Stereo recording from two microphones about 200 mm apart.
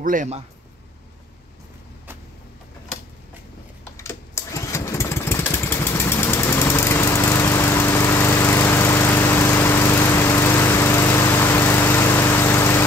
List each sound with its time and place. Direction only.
0.0 s a man's voice: 40° right (ahead or behind)
3.9 s lawn mower: 15° left (ahead or behind)